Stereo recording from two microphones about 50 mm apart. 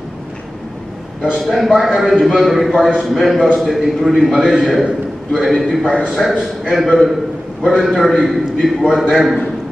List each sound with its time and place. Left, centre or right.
1.5 s a man's voice: centre
5.5 s a man's voice: centre